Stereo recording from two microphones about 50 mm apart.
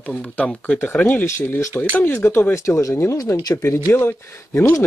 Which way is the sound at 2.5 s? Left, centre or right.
Left.